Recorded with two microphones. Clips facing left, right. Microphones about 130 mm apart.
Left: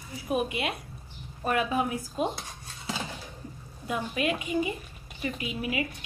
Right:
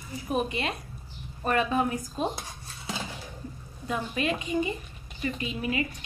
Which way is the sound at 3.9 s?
10° left (ahead or behind).